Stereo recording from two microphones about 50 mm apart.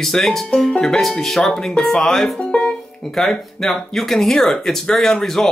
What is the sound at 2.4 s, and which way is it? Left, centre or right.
Music, centre.